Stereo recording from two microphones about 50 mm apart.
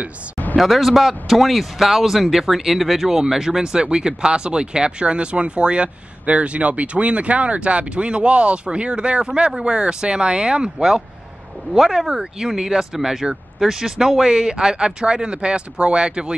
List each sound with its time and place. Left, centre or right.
0.6 s speech: centre